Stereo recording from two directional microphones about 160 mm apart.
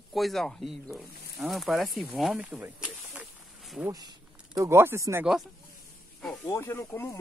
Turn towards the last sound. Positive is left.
turn(degrees=15)  # may be behind; listen again after turning